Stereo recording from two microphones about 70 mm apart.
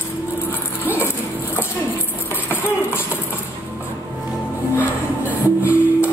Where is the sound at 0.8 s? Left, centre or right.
Right.